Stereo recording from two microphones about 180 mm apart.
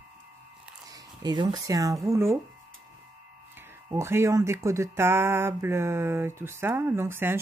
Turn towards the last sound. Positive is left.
turn(degrees=-15)  # may be behind; listen again after turning